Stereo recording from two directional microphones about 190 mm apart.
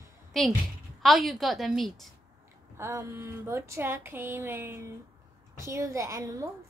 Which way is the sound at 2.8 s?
15° right (ahead or behind).